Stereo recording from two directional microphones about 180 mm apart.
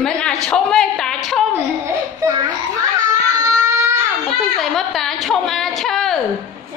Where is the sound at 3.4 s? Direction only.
20° right (ahead or behind).